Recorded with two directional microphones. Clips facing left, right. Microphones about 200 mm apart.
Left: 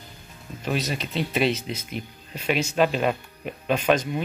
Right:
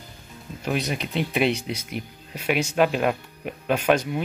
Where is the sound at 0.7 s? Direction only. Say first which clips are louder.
Right 1 dB; 15° right (ahead or behind).